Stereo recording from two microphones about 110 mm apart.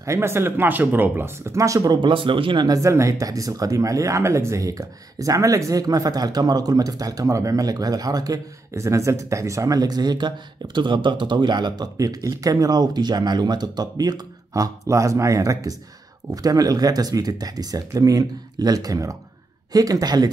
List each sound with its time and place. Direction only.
0.0 s speech: 25° right (ahead or behind)
2.0 s speech: 50° right (ahead or behind)